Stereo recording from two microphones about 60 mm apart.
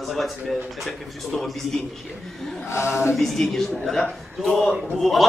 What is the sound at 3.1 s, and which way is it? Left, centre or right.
A man's voice, centre.